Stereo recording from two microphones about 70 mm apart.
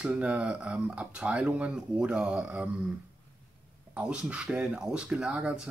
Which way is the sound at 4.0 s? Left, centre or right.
Centre.